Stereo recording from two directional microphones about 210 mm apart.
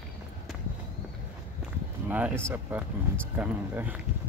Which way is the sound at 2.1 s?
10° right (ahead or behind).